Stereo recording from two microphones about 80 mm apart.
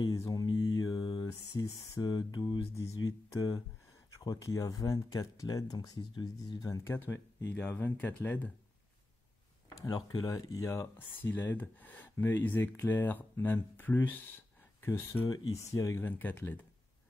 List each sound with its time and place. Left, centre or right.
0.2 s mantra: left
1.5 s speech: left
2.0 s mantra: left
2.7 s speech: left
6.9 s speech: left
9.8 s mantra: left
10.2 s speech: left
10.7 s speech: left
15.2 s mantra: left
15.7 s speech: left
16.1 s speech: left